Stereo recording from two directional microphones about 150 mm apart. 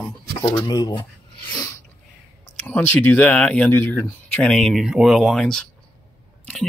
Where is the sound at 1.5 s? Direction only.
25° left (ahead or behind).